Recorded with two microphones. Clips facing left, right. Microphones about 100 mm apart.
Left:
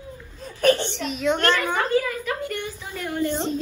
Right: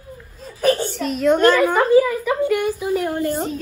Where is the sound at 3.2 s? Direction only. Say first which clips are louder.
Right 2 dB; 45° right (ahead or behind).